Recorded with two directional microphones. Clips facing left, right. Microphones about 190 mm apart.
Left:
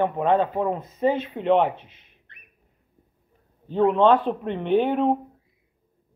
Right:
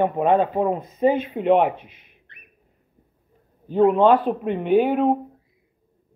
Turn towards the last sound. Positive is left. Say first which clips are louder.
# right 2 dB
turn(degrees=-5)  # may be behind; listen again after turning